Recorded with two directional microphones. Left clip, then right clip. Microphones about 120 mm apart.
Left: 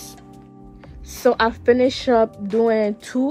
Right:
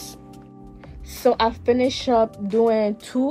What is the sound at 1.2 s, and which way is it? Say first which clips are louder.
Speech: left 1 dB; 35° left (ahead or behind).